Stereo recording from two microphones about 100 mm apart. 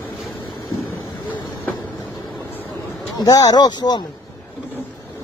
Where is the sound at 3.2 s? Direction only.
35° left (ahead or behind).